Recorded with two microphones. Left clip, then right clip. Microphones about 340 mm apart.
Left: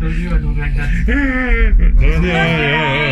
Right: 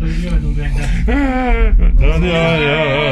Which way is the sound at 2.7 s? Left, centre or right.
Right.